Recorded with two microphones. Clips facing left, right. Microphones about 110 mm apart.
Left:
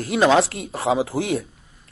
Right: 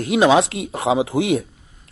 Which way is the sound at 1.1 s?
90° right.